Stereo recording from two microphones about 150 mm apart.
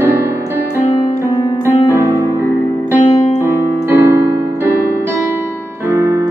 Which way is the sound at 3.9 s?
15° right (ahead or behind).